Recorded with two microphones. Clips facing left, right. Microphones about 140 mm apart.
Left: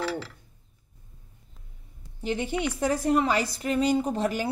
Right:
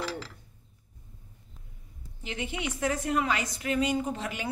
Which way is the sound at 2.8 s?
35° left (ahead or behind).